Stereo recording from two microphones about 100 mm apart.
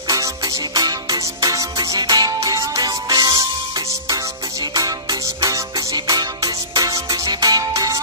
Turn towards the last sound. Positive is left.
turn(degrees=-35)  # may be behind; listen again after turning